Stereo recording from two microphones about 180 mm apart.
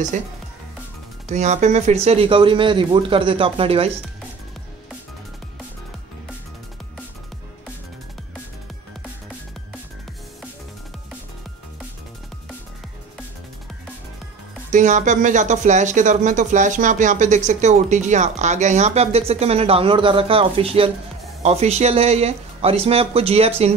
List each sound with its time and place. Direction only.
1.3 s speech: 40° right (ahead or behind)
14.7 s speech: 45° right (ahead or behind)